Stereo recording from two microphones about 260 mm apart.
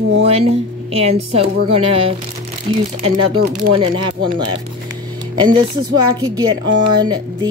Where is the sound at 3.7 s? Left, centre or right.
Centre.